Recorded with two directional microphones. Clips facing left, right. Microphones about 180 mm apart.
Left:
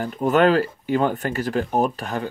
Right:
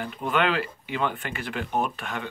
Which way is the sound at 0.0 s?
40° left (ahead or behind).